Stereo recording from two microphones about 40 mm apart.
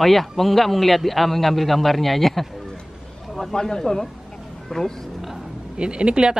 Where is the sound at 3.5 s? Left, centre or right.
Centre.